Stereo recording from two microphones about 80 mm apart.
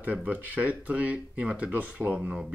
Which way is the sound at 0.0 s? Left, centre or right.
Centre.